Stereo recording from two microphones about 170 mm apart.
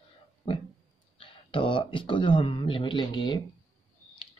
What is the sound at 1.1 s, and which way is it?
Speech, 30° left (ahead or behind).